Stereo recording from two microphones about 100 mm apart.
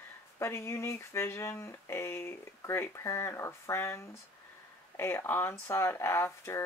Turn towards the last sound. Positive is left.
turn(degrees=25)  # may be behind; listen again after turning